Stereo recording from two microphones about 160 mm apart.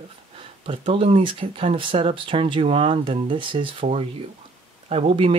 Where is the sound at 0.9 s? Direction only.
35° right (ahead or behind).